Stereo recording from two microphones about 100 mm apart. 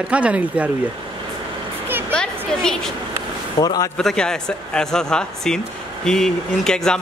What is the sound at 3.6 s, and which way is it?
Speech, 40° left (ahead or behind).